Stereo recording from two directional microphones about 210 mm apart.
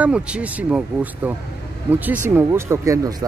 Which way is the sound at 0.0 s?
5° right (ahead or behind).